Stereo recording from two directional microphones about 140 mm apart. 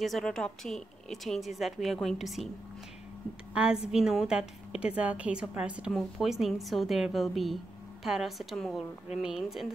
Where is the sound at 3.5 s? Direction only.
5° right (ahead or behind).